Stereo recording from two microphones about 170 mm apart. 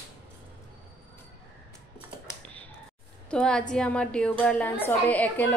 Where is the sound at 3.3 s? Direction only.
5° left (ahead or behind).